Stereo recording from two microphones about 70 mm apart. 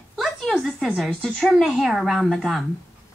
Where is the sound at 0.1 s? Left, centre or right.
Centre.